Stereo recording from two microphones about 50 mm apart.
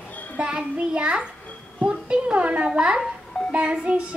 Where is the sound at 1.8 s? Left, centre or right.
Right.